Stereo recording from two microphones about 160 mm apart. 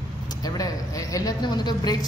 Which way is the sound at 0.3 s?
25° left (ahead or behind).